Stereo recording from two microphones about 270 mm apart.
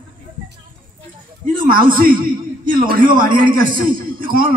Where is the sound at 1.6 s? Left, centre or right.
Right.